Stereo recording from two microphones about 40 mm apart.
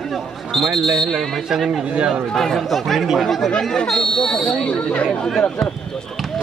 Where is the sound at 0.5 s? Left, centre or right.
Centre.